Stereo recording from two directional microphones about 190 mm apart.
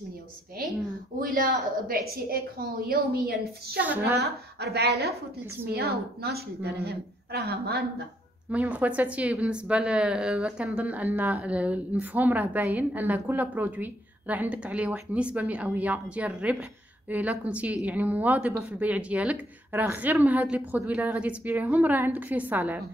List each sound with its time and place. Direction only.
1.2 s a woman's voice: 50° right (ahead or behind)
3.8 s a woman's voice: 10° right (ahead or behind)
4.2 s a woman's voice: 60° right (ahead or behind)
8.5 s a woman's voice: 5° right (ahead or behind)